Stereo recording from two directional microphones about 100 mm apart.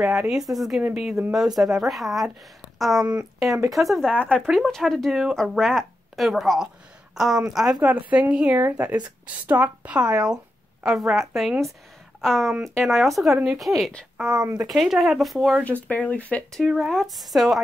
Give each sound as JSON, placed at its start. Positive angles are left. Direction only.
{"t": 0.1, "sound": "a woman's voice", "side_deg": -5}
{"t": 3.1, "sound": "a woman's voice", "side_deg": -10}
{"t": 3.4, "sound": "speech", "side_deg": -30}
{"t": 3.7, "sound": "speech", "side_deg": 0}
{"t": 4.2, "sound": "speech", "side_deg": 10}
{"t": 4.5, "sound": "speech", "side_deg": 0}
{"t": 7.8, "sound": "a woman's voice", "side_deg": -15}
{"t": 14.3, "sound": "speech", "side_deg": -35}
{"t": 14.7, "sound": "speech", "side_deg": 0}
{"t": 15.6, "sound": "speech", "side_deg": 15}
{"t": 16.5, "sound": "speech", "side_deg": -5}